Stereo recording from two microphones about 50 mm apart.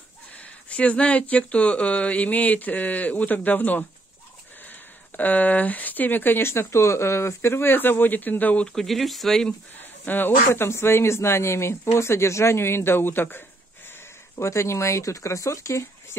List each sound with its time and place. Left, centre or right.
0.4 s speech: left
8.6 s speech: centre
9.5 s speech: left
14.3 s speech: left